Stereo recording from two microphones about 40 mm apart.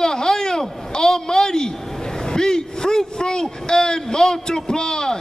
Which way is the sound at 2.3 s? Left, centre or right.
Centre.